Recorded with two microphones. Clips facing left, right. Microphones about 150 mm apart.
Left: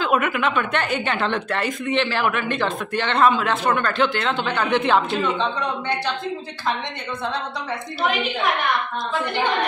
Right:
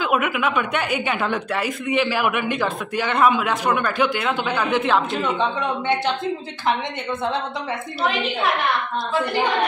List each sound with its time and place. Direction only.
0.0 s speech: 10° right (ahead or behind)
5.4 s speech: 20° right (ahead or behind)